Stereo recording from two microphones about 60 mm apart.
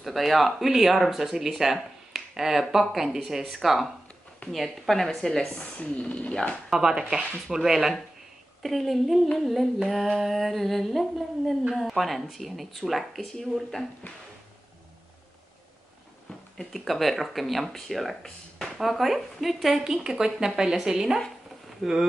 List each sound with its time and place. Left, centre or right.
0.0 s speech: centre
6.7 s speech: centre
16.7 s speech: centre